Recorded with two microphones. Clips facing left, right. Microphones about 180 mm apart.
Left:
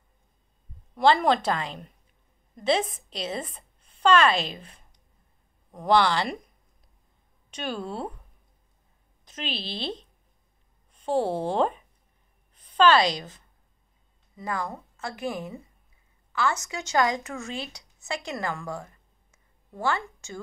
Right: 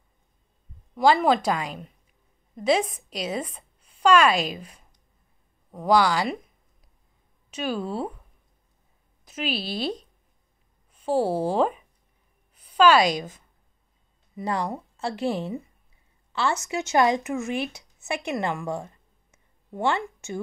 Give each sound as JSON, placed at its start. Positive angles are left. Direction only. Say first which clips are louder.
{"t": 0.9, "sound": "a woman's voice", "louder": "right 1 dB", "side_deg": -10}
{"t": 7.5, "sound": "speech", "louder": "right 4 dB", "side_deg": -5}
{"t": 9.2, "sound": "a woman's voice", "louder": "right 5 dB", "side_deg": -10}
{"t": 14.3, "sound": "a woman's voice", "louder": "right 4 dB", "side_deg": -30}